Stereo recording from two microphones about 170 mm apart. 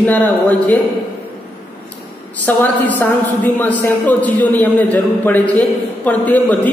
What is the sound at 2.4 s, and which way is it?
A woman's voice, 10° left (ahead or behind).